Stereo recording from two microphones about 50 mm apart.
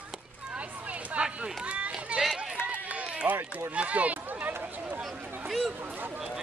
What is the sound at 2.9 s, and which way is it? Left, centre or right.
Run, right.